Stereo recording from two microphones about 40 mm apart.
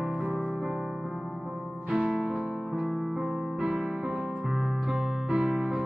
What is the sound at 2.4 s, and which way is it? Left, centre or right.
Music, centre.